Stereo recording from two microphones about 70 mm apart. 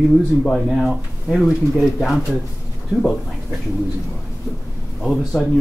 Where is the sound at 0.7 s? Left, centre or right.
Centre.